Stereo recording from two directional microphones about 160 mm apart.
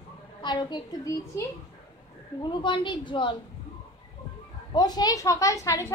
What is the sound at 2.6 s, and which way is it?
Speech, 30° left (ahead or behind).